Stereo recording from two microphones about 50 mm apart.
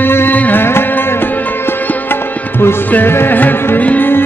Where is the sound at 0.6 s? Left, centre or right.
Left.